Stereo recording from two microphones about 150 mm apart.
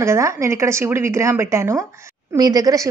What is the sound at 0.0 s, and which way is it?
A woman's voice, 20° right (ahead or behind).